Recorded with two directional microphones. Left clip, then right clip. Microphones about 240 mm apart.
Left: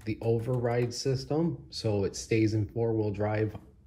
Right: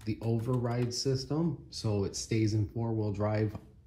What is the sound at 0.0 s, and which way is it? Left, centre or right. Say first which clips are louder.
Speech: left 5 dB; centre.